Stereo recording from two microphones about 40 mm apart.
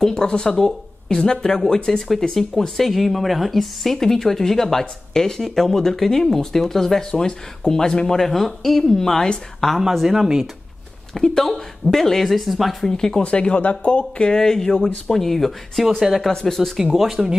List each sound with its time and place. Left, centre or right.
0.0 s speech: centre
8.3 s speech: centre
10.0 s speech: centre
11.1 s speech: centre
12.9 s speech: centre
13.2 s speech: left; by 16.7 s centre
16.9 s speech: centre